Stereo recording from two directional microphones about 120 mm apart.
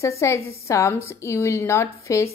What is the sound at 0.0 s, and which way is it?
A woman's voice, 25° left (ahead or behind).